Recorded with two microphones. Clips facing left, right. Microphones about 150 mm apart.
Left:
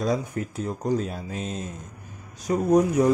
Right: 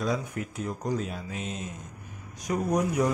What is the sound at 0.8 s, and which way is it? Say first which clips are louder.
Speech: left 6 dB; 35° left (ahead or behind).